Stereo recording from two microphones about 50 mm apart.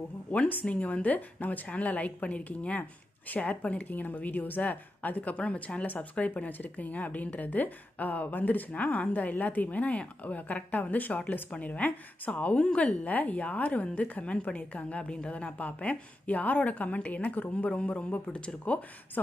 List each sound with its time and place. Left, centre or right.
0.3 s a woman's voice: left